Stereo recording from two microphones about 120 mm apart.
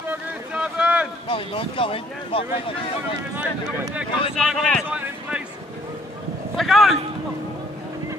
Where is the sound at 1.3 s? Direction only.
45° left (ahead or behind).